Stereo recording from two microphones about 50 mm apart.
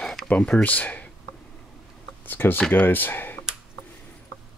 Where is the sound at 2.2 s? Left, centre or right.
Left.